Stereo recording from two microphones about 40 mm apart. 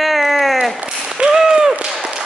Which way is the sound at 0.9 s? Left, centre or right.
Centre.